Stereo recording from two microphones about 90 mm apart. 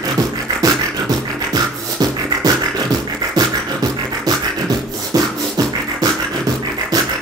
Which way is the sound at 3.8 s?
45° right (ahead or behind).